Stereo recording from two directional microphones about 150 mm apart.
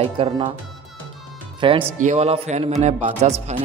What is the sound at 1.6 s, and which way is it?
Speech, 35° right (ahead or behind).